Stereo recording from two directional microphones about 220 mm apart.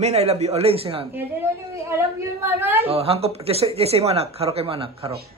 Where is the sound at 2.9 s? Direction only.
25° right (ahead or behind).